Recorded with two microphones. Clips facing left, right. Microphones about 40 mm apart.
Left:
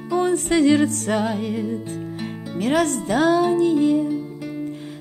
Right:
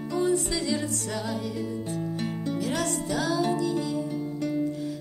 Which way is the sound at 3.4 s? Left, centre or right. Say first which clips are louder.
Left 9 dB; left.